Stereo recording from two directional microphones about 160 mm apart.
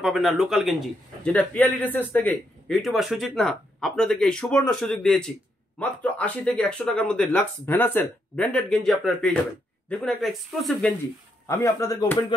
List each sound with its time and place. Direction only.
0.0 s speech: 5° right (ahead or behind)
2.7 s speech: centre (ahead or behind)
11.4 s speech: 20° left (ahead or behind)